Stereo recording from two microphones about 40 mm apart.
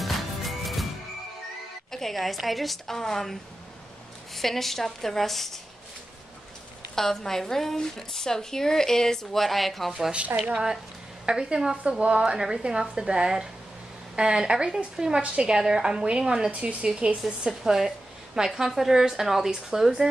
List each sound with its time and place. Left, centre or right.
0.0 s music: centre
1.9 s a woman's voice: centre
4.4 s a woman's voice: centre
7.0 s a woman's voice: centre
10.3 s a woman's voice: centre
15.2 s a woman's voice: right
15.5 s a woman's voice: centre
16.5 s a woman's voice: right
17.2 s a woman's voice: centre